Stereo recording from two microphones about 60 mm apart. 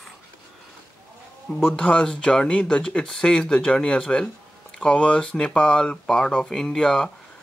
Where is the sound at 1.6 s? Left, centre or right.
Centre.